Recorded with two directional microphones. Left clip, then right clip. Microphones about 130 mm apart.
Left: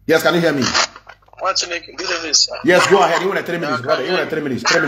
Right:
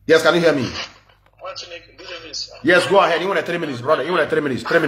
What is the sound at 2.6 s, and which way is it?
Speech, centre (ahead or behind).